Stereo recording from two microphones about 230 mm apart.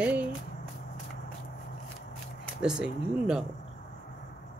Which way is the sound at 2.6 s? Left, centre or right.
Centre.